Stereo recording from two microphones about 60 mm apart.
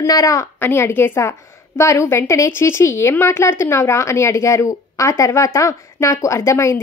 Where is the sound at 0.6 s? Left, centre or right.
Left.